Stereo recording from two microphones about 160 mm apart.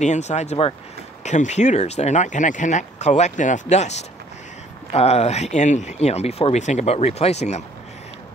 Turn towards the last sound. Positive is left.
turn(degrees=45)  # may be behind; listen again after turning